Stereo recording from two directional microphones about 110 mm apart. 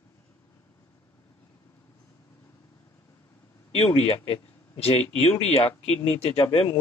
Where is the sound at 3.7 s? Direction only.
65° left (ahead or behind).